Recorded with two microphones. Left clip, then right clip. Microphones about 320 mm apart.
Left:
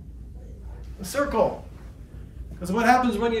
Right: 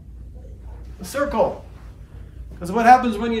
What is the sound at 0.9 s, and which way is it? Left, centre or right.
Speech, centre.